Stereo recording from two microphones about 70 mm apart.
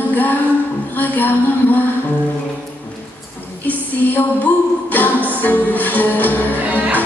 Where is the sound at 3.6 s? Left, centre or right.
Left.